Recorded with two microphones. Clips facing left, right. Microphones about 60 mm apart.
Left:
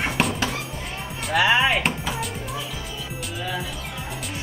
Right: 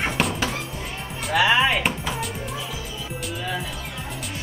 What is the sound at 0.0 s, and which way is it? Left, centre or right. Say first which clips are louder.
Music: even; centre.